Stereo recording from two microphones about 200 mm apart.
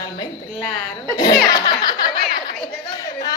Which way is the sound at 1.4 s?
20° left (ahead or behind).